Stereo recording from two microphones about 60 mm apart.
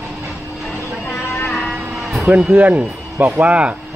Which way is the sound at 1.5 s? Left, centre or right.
Centre.